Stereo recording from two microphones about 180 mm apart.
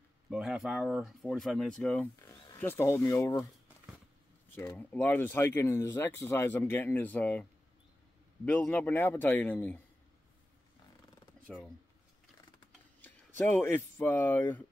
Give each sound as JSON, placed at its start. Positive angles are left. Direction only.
{"t": 0.3, "sound": "speech", "side_deg": -5}
{"t": 2.2, "sound": "speech", "side_deg": 15}
{"t": 4.6, "sound": "speech", "side_deg": 15}
{"t": 8.5, "sound": "speech", "side_deg": 10}
{"t": 11.4, "sound": "speech", "side_deg": 5}
{"t": 13.5, "sound": "speech", "side_deg": 10}